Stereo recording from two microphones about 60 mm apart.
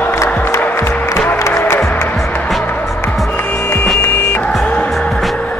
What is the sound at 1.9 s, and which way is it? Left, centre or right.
Music, left.